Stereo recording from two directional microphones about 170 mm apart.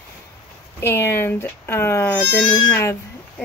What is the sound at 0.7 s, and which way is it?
Speech, 15° left (ahead or behind).